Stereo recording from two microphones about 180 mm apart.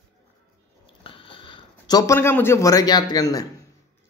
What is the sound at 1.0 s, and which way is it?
A man's voice, 30° left (ahead or behind).